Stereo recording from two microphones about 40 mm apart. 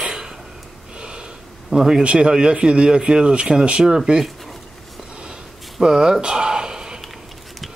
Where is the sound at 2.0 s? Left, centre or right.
Right.